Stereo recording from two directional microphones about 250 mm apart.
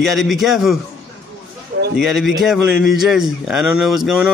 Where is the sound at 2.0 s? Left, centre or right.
Centre.